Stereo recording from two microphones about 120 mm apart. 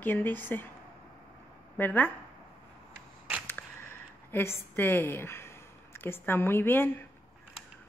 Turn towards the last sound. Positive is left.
turn(degrees=20)  # may be behind; listen again after turning